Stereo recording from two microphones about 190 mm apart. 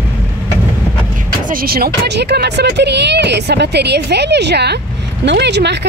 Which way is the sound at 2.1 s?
60° right (ahead or behind).